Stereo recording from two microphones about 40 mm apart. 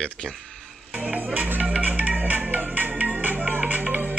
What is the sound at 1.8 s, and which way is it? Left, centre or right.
Music, right.